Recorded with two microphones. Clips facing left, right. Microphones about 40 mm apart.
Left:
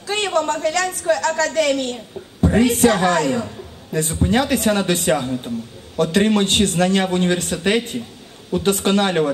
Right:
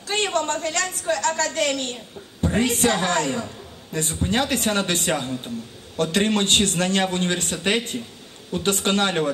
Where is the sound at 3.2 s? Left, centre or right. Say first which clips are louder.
Left 4 dB; centre.